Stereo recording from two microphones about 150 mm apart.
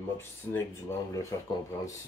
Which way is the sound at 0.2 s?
15° left (ahead or behind).